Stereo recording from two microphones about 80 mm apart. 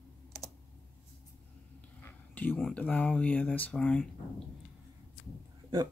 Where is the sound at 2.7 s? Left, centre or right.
Centre.